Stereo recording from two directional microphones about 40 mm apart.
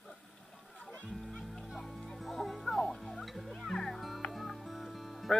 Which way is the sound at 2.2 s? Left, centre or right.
Centre.